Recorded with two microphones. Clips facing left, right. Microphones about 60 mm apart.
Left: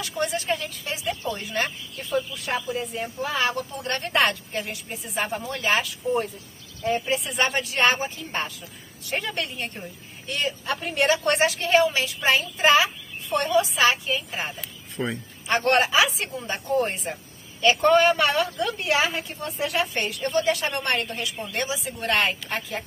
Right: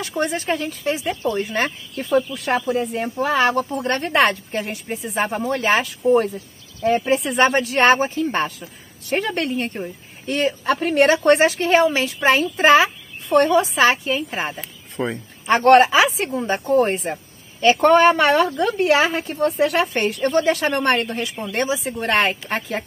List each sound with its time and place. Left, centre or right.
0.0 s speech: right
2.1 s speech: right
2.9 s speech: right
3.8 s speech: right
10.6 s speech: right
11.2 s a woman's voice: right
14.5 s speech: right